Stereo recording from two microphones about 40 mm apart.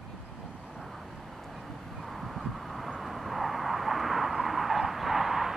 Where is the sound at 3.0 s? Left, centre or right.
Centre.